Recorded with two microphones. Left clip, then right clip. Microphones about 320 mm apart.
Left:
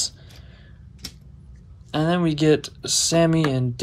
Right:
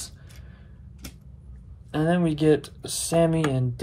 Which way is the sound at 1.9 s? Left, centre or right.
Centre.